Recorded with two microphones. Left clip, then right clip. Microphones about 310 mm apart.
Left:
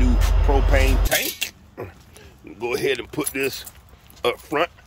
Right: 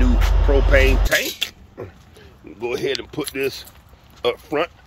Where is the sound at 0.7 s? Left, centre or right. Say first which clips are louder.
Right 5 dB; centre.